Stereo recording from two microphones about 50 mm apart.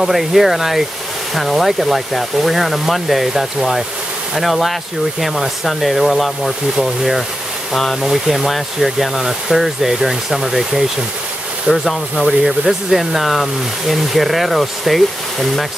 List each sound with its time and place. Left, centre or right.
0.0 s speech: centre